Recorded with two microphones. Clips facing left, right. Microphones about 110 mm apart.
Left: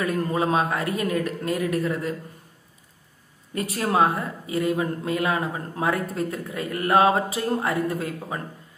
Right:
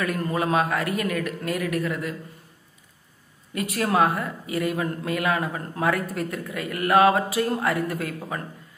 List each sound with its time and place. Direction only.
0.0 s a man's voice: 25° left (ahead or behind)
3.5 s speech: 30° left (ahead or behind)
3.9 s a man's voice: 20° left (ahead or behind)